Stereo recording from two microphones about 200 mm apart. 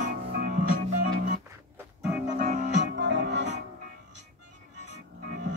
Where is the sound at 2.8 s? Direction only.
60° right (ahead or behind).